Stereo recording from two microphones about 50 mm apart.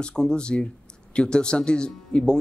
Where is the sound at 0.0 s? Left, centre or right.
Centre.